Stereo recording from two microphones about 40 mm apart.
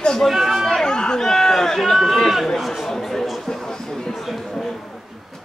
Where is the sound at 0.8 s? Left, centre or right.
Centre.